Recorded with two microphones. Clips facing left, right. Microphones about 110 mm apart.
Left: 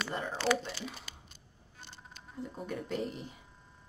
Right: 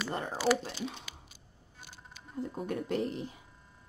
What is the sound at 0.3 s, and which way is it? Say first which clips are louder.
Speech: right 2 dB; 5° right (ahead or behind).